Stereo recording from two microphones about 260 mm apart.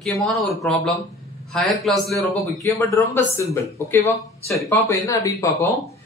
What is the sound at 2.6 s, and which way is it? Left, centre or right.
Speech, centre.